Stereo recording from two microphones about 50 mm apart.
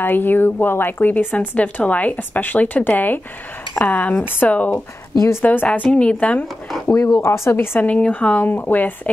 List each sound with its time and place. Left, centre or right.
0.0 s speech: left
0.9 s speech: left
4.5 s speech: left
5.7 s a woman's voice: left
6.1 s speech: left
6.9 s speech: left
7.5 s speech: left
7.8 s speech: left